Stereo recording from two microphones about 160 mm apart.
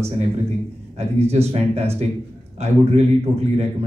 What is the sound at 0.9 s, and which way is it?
Speech, 40° right (ahead or behind).